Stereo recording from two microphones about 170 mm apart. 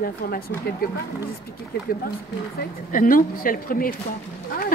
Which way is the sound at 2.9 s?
55° left (ahead or behind).